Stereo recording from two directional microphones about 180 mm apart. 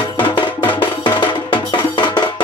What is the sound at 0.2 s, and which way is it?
Music, 25° left (ahead or behind).